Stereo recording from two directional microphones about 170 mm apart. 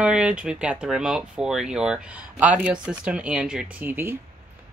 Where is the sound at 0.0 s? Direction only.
5° right (ahead or behind).